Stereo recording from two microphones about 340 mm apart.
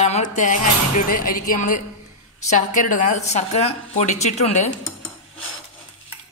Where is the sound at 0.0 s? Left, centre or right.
Left.